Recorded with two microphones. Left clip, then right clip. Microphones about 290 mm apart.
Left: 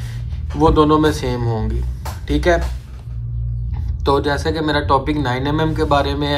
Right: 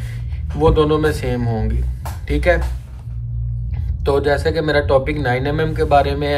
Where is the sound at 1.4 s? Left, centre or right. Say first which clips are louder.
Even; left.